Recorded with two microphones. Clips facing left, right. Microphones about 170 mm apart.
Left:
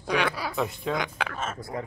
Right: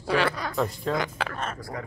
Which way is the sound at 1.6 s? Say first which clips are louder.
Left 2 dB; 25° left (ahead or behind).